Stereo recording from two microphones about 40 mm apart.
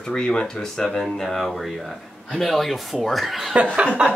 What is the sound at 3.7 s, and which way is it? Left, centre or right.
Chuckle, right.